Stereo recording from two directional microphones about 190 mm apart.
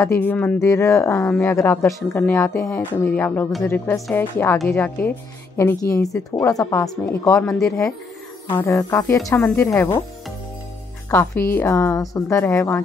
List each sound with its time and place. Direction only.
0.0 s speech: 10° left (ahead or behind)
7.5 s speech: centre (ahead or behind)
8.5 s speech: 15° left (ahead or behind)
11.1 s speech: 10° left (ahead or behind)